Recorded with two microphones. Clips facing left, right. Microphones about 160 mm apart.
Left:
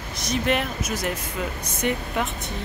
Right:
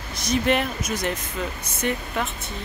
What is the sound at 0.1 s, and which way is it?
Speech, centre (ahead or behind).